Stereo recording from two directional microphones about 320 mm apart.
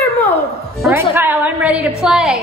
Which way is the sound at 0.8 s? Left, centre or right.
Centre.